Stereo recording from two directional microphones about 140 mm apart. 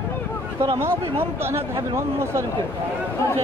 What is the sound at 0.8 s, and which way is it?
Speech, 15° right (ahead or behind).